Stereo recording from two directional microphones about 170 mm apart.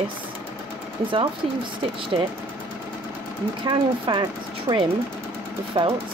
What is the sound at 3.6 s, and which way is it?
Speech, 25° right (ahead or behind).